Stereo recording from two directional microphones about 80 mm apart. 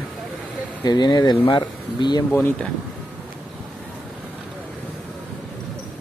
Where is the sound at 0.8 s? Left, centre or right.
Left.